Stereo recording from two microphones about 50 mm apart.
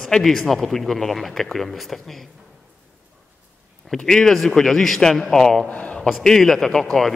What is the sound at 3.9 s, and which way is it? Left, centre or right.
A man's voice, centre.